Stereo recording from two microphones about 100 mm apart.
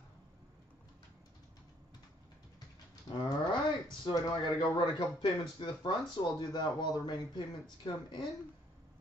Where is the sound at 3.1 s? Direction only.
50° left (ahead or behind).